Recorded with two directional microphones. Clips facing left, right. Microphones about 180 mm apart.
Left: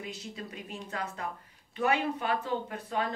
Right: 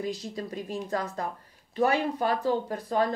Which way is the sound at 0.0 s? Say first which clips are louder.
Right 8 dB; 35° right (ahead or behind).